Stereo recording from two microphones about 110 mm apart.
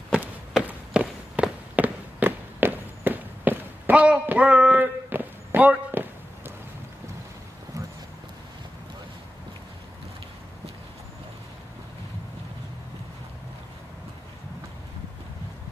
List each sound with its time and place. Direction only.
0.1 s walk: 10° right (ahead or behind)